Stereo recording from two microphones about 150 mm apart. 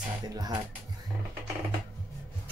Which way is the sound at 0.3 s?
25° right (ahead or behind).